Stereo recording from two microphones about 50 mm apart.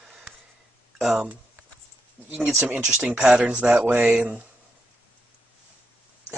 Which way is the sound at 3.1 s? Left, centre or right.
Centre.